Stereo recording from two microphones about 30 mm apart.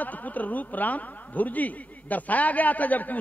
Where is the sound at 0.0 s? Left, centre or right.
Left.